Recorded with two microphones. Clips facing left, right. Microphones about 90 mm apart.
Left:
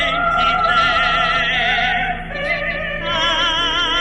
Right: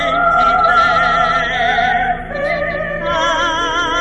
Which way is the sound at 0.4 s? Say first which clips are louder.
Right 4 dB; 25° right (ahead or behind).